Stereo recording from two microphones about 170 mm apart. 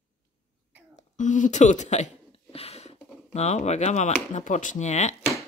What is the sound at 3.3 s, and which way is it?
Speech, 40° left (ahead or behind).